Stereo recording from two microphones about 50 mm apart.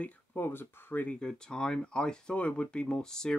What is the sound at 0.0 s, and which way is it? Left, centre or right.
Speech, left.